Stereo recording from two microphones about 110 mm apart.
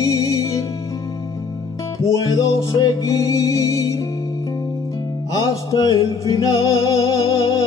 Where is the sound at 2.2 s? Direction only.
35° left (ahead or behind).